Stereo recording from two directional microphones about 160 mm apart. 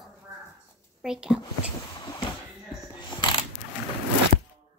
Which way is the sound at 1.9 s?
25° left (ahead or behind).